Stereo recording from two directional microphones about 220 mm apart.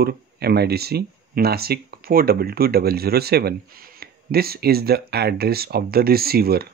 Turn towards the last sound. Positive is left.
turn(degrees=-45)  # may be behind; listen again after turning